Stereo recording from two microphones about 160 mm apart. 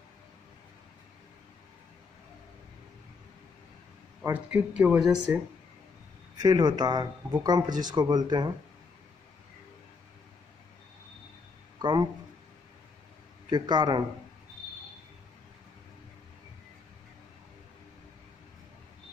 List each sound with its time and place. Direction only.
4.2 s speech: 10° right (ahead or behind)
6.3 s speech: 25° right (ahead or behind)
13.5 s speech: 25° right (ahead or behind)